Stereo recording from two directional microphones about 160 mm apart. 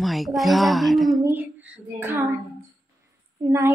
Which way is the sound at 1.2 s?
10° right (ahead or behind).